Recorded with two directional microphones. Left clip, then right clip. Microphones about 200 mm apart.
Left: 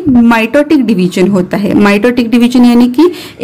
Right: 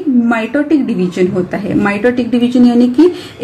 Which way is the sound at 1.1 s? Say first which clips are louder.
Left 4 dB; 50° left (ahead or behind).